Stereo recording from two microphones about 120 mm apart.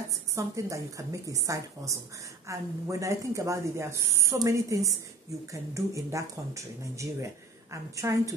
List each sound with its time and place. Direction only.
0.1 s speech: 25° right (ahead or behind)